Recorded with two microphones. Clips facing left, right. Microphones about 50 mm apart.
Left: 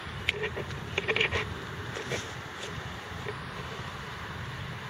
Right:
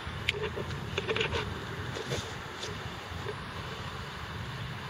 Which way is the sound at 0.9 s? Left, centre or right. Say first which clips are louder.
Left 3 dB; left.